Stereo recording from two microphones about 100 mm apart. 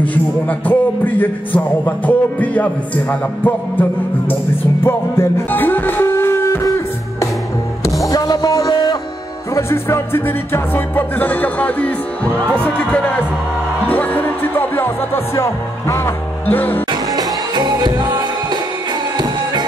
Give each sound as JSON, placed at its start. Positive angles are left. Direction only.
{"t": 0.0, "sound": "music", "side_deg": 15}
{"t": 4.8, "sound": "music", "side_deg": 20}
{"t": 7.8, "sound": "music", "side_deg": 35}
{"t": 16.9, "sound": "music", "side_deg": -40}